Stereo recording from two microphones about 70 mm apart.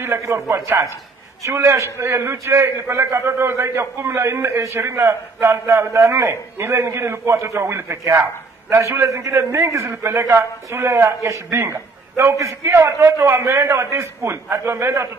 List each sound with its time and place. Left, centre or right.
0.5 s a man's voice: right